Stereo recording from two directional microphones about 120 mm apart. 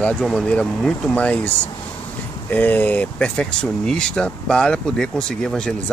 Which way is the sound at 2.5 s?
15° left (ahead or behind).